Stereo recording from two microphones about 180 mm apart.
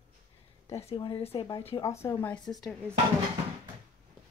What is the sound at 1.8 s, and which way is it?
Speech, 15° left (ahead or behind).